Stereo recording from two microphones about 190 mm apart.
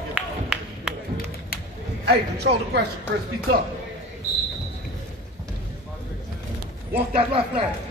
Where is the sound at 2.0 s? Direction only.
60° right (ahead or behind).